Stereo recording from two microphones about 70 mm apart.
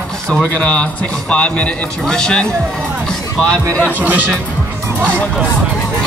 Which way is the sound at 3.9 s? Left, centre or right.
Right.